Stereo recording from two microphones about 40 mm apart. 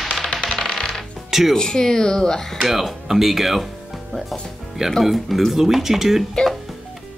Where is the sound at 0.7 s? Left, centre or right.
Centre.